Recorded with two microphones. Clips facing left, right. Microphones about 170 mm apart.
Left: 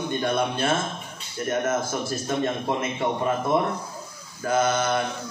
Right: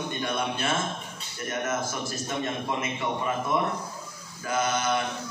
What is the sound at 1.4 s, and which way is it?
Speech, 50° left (ahead or behind).